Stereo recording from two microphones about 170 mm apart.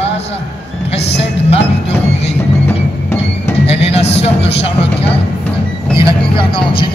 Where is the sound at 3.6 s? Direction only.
35° left (ahead or behind).